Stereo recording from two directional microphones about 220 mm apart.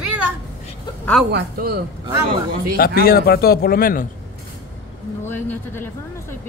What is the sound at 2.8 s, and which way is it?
A man's voice, 45° left (ahead or behind).